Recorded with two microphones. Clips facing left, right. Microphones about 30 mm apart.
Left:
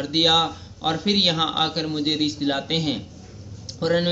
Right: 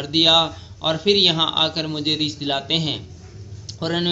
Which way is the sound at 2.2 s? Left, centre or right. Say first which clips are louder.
Left 1 dB; right.